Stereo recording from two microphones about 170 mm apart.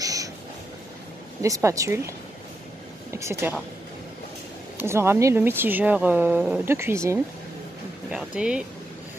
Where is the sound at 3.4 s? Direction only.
10° right (ahead or behind).